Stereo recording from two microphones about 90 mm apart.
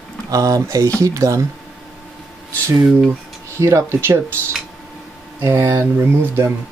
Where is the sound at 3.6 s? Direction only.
30° right (ahead or behind).